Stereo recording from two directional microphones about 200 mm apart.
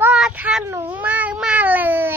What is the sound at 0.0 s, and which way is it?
Cat, 5° right (ahead or behind).